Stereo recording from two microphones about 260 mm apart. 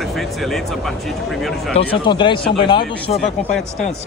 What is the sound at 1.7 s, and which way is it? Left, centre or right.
Speech, centre.